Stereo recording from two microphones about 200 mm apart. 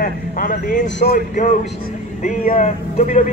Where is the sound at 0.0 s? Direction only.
45° left (ahead or behind).